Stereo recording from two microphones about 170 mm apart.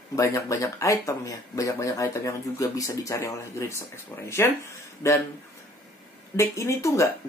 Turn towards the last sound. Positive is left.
turn(degrees=15)  # may be behind; listen again after turning